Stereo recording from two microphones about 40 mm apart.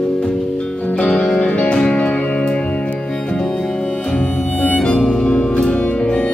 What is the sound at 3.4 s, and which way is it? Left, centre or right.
Harmonica, centre.